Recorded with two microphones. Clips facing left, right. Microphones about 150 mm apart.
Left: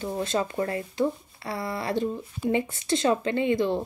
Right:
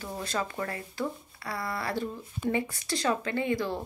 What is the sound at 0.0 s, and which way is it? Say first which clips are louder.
A woman's voice: left 6 dB; 25° left (ahead or behind).